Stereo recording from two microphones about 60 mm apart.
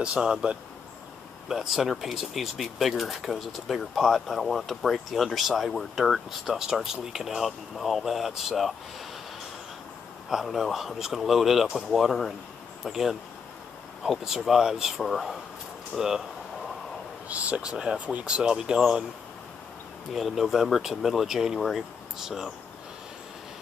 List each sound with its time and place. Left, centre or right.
0.0 s speech: centre
10.3 s speech: centre
17.3 s speech: right
20.1 s speech: centre